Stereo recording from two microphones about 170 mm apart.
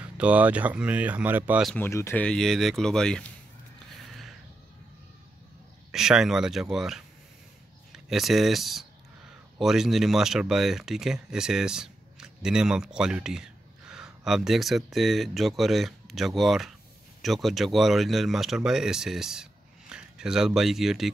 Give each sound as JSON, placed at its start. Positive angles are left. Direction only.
{"t": 0.0, "sound": "speech", "side_deg": -10}
{"t": 1.8, "sound": "speech", "side_deg": 15}
{"t": 5.9, "sound": "speech", "side_deg": -5}